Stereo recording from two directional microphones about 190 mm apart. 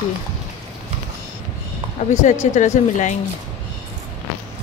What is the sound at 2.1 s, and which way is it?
Speech, 40° left (ahead or behind).